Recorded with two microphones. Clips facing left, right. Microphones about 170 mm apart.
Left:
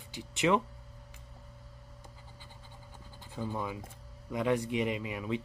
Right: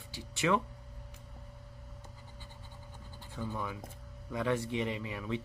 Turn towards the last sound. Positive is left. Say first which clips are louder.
# left 2 dB
turn(degrees=15)  # may be behind; listen again after turning